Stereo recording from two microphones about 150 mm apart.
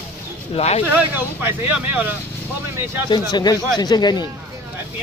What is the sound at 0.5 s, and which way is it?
Speech, 45° left (ahead or behind).